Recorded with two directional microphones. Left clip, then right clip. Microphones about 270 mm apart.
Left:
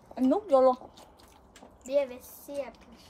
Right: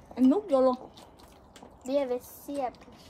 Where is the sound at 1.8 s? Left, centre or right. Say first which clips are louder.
Even; centre.